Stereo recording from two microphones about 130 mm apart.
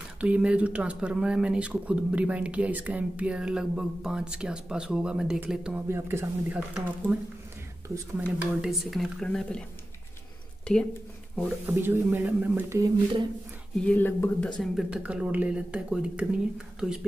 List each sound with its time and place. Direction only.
0.2 s speech: 10° right (ahead or behind)
5.9 s speech: 20° right (ahead or behind)
7.9 s speech: 25° right (ahead or behind)
8.4 s speech: 5° right (ahead or behind)
11.3 s speech: 15° right (ahead or behind)
13.7 s speech: 10° left (ahead or behind)
14.6 s speech: 5° right (ahead or behind)